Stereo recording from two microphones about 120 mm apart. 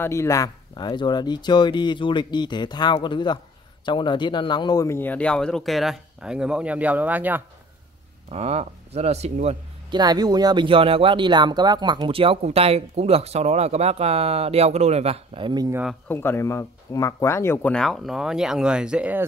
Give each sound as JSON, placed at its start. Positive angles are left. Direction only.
{"t": 0.0, "sound": "speech", "side_deg": 25}
{"t": 0.7, "sound": "speech", "side_deg": 40}
{"t": 4.8, "sound": "speech", "side_deg": 15}
{"t": 8.3, "sound": "speech", "side_deg": -60}
{"t": 9.8, "sound": "speech", "side_deg": -35}
{"t": 16.1, "sound": "speech", "side_deg": 20}
{"t": 17.7, "sound": "speech", "side_deg": 0}